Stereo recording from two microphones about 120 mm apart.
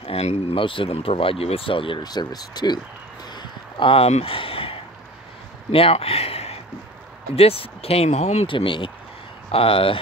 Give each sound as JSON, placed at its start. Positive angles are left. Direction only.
{"t": 0.0, "sound": "speech", "side_deg": 60}
{"t": 3.3, "sound": "a sound", "side_deg": 45}
{"t": 5.7, "sound": "speech", "side_deg": 50}
{"t": 8.5, "sound": "speech", "side_deg": 45}